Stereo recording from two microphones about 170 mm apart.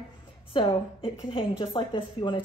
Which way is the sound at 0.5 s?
30° left (ahead or behind).